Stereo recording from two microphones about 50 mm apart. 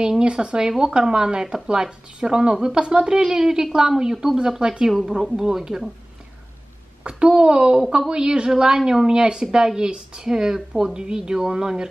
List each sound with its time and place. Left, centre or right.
0.2 s speech: centre
4.9 s speech: centre
7.0 s speech: centre